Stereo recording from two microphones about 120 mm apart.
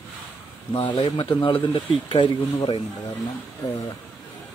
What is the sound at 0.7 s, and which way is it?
Speech, 50° left (ahead or behind).